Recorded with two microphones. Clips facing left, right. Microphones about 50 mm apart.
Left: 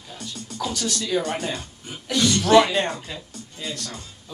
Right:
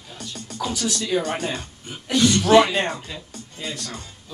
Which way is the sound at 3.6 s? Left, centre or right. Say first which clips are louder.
Right 1 dB; right.